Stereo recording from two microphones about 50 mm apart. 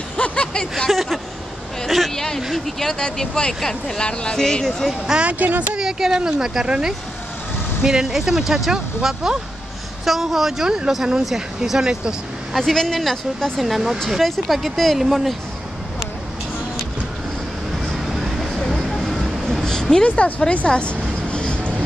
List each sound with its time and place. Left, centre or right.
0.2 s vehicle: centre
0.8 s speech: centre
5.2 s speech: right
5.8 s speech: centre
12.5 s speech: centre
18.0 s vehicle: centre
20.1 s speech: left
21.3 s vehicle: left